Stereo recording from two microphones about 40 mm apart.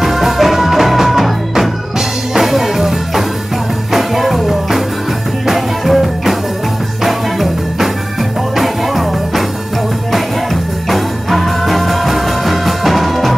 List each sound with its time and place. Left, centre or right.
0.0 s music: centre